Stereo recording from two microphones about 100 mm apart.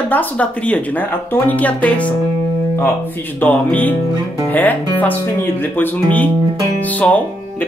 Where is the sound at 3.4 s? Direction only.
15° left (ahead or behind).